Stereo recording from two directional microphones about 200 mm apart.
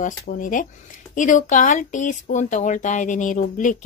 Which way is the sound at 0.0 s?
40° left (ahead or behind).